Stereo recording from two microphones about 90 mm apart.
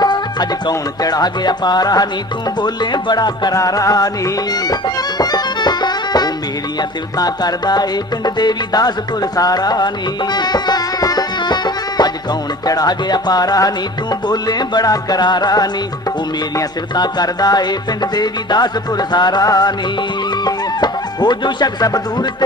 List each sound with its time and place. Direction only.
0.0 s music: 50° left (ahead or behind)
16.9 s music: 50° left (ahead or behind)
20.4 s speech: 55° left (ahead or behind)